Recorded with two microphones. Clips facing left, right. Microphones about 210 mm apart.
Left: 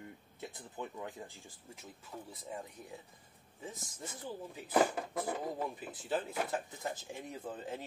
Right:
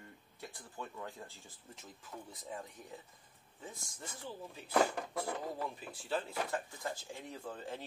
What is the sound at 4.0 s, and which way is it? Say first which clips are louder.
Speech: left 3 dB; 15° left (ahead or behind).